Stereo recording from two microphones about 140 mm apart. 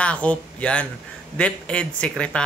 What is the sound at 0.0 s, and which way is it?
A man's voice, 10° left (ahead or behind).